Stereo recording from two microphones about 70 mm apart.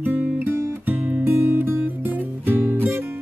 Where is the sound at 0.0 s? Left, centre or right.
Right.